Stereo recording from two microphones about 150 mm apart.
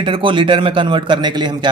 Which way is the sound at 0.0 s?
35° right (ahead or behind).